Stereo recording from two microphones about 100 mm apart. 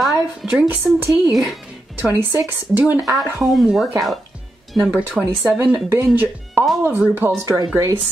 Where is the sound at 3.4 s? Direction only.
Centre (ahead or behind).